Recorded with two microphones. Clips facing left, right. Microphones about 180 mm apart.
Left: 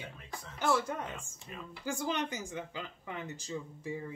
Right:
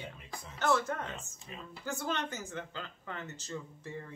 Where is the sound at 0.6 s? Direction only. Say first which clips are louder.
Right 1 dB; 10° left (ahead or behind).